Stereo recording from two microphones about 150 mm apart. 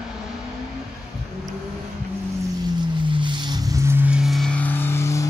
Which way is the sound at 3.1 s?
30° right (ahead or behind).